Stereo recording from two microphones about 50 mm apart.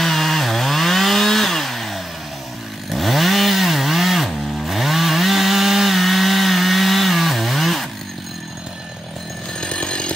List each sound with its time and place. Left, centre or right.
0.0 s chainsaw: centre
9.6 s chainsaw: left